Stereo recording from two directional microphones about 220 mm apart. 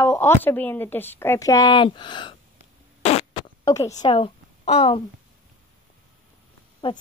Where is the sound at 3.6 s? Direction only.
15° left (ahead or behind).